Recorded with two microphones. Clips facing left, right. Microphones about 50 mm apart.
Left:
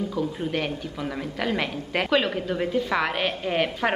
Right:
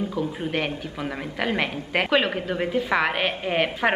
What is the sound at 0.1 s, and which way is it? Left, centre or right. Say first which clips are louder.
A woman's voice: even; centre.